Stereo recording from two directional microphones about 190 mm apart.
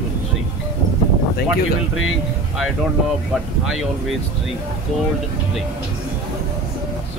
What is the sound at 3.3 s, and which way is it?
Speech, centre (ahead or behind).